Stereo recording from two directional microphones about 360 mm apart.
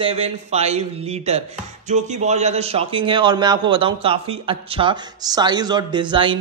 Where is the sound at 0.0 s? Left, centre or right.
Centre.